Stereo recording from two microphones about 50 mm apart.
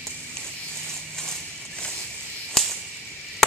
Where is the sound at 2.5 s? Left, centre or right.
Centre.